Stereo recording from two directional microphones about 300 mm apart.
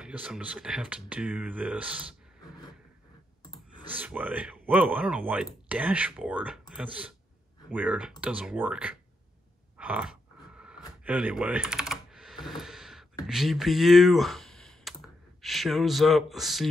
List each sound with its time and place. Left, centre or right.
0.0 s speech: centre
3.9 s speech: centre
9.8 s a sound: centre
11.1 s typing: centre
13.3 s speech: centre